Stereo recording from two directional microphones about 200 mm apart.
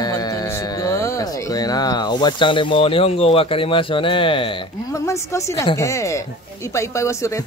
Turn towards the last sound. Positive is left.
turn(degrees=15)  # may be behind; listen again after turning